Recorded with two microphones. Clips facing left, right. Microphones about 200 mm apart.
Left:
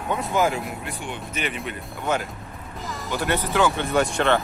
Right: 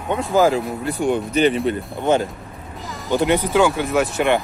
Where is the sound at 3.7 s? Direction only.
5° right (ahead or behind).